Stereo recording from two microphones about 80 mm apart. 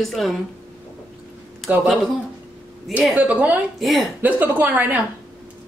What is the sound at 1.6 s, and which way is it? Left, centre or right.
Speech, centre.